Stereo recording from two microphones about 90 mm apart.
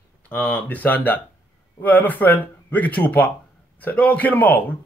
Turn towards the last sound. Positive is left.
turn(degrees=20)  # may be behind; listen again after turning